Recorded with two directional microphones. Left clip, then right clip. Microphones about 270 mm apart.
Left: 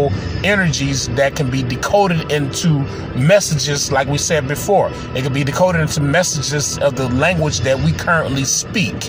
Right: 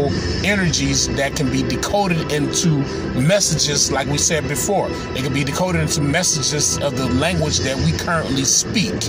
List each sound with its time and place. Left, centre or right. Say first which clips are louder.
0.5 s speech: left 4 dB; left